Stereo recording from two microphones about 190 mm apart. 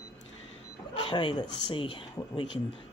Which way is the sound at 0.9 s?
25° left (ahead or behind).